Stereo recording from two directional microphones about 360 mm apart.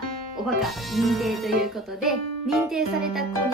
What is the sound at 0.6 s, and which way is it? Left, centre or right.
Music, centre.